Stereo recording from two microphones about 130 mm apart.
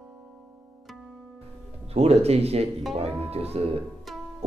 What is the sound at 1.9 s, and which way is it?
Speech, 50° right (ahead or behind).